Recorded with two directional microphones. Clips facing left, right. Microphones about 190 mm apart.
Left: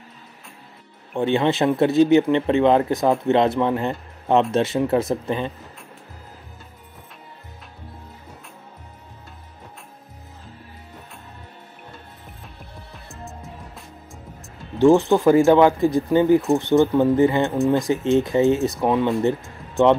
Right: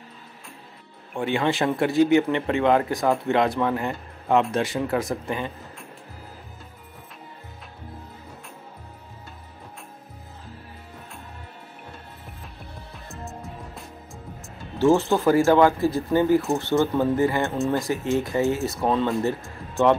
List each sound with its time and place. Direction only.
1.1 s speech: 25° left (ahead or behind)
12.9 s music: centre (ahead or behind)
14.8 s speech: 15° left (ahead or behind)